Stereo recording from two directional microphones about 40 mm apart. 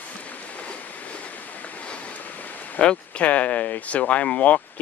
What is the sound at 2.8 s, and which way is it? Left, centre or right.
Speech, left.